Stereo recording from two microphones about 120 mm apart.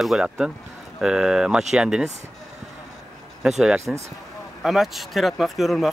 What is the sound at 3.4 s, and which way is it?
Speech, 5° right (ahead or behind).